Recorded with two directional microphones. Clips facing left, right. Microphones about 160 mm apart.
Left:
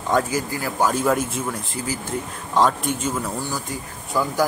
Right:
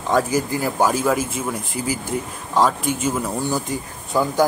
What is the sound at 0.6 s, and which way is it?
Speech, 15° right (ahead or behind).